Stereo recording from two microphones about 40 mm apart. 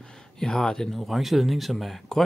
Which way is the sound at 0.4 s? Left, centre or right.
Centre.